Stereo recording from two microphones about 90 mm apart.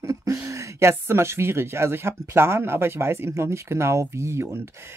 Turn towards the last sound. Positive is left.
turn(degrees=-30)  # may be behind; listen again after turning